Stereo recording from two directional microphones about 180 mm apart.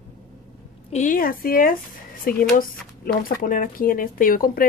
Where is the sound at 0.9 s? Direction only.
45° left (ahead or behind).